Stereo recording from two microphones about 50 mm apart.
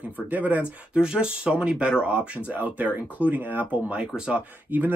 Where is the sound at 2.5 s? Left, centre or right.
Right.